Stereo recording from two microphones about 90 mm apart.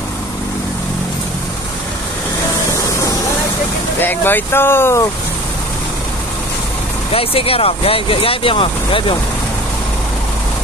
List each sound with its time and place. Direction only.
4.0 s speech: 20° left (ahead or behind)
7.1 s speech: 90° left; by 9.1 s 70° left (ahead or behind)